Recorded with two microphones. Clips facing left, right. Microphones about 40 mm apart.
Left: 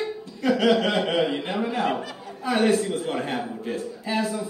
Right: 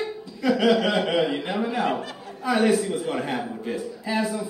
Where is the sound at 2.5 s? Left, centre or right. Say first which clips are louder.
Even; left.